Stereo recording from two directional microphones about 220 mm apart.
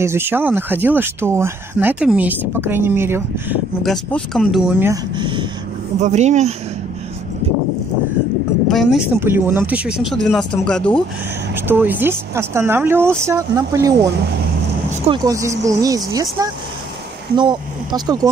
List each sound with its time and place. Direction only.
0.0 s speech: 10° right (ahead or behind)
3.8 s speech: centre (ahead or behind); by 5.5 s 20° right (ahead or behind)
5.9 s speech: 30° right (ahead or behind)
8.6 s speech: centre (ahead or behind)
9.2 s speech: 10° right (ahead or behind)
11.5 s speech: 10° right (ahead or behind)
15.0 s speech: 15° right (ahead or behind)